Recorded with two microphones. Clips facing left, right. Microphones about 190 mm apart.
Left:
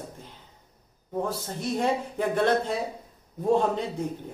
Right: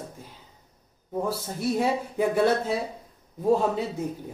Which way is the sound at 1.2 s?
10° right (ahead or behind).